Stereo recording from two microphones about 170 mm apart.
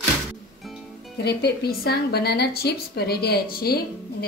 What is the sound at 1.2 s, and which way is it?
A woman's voice, 70° left (ahead or behind).